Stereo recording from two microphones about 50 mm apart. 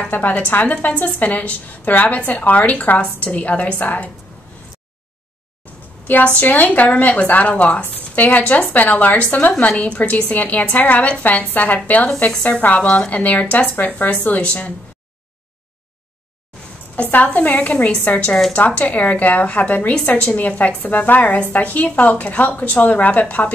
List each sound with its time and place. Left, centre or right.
0.1 s a woman's voice: left
6.2 s a woman's voice: left
16.9 s a woman's voice: left